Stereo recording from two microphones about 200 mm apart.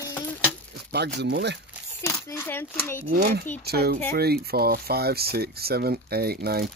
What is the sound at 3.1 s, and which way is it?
Speech, 50° right (ahead or behind).